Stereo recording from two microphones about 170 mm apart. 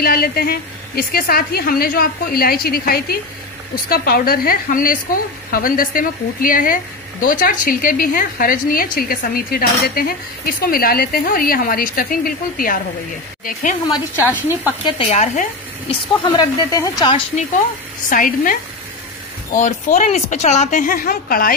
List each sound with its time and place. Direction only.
0.0 s a woman's voice: 65° left (ahead or behind)
14.2 s speech: 10° right (ahead or behind)
14.9 s speech: 35° left (ahead or behind)
15.9 s speech: 30° left (ahead or behind)
18.1 s a woman's voice: 55° left (ahead or behind)